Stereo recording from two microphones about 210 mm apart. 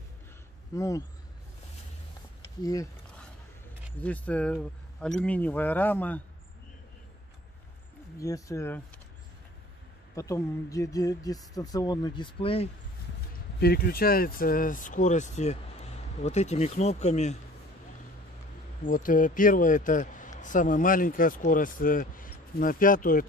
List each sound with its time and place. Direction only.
0.7 s speech: 15° left (ahead or behind)
2.6 s speech: 15° left (ahead or behind)
4.0 s speech: 5° left (ahead or behind)
8.2 s speech: 15° left (ahead or behind)
10.1 s speech: 15° left (ahead or behind)
13.6 s speech: 50° left (ahead or behind)
18.9 s speech: 40° left (ahead or behind)